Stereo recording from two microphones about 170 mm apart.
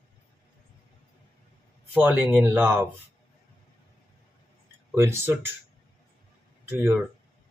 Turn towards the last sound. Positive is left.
turn(degrees=-10)  # may be behind; listen again after turning